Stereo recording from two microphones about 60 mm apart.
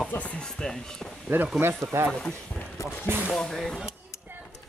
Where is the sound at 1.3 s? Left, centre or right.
Right.